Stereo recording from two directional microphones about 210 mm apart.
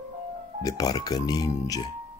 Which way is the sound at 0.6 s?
15° left (ahead or behind).